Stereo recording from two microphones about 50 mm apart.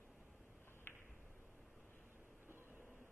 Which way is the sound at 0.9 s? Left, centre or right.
Left.